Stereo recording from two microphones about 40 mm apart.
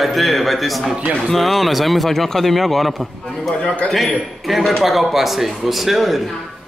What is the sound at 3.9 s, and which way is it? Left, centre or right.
A man's voice, centre.